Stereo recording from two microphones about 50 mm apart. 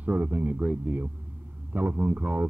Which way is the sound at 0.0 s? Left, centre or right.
Right.